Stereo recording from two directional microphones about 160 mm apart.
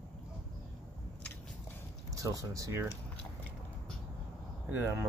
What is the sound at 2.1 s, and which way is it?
Speech, 20° right (ahead or behind).